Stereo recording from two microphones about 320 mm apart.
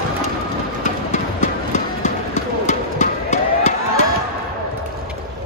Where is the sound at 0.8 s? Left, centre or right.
Left.